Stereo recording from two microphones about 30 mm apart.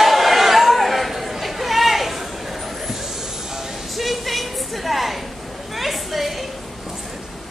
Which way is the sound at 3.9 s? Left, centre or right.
Centre.